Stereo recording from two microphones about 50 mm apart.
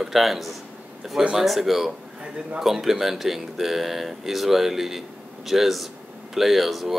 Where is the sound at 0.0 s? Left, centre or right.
Centre.